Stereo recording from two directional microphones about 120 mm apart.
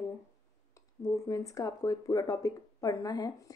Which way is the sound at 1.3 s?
25° left (ahead or behind).